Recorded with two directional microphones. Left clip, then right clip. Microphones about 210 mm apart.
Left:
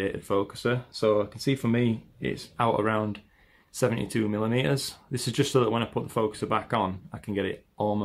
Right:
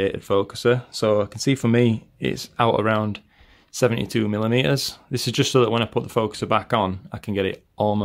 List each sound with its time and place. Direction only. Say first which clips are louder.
0.0 s speech: right 6 dB; 45° right (ahead or behind)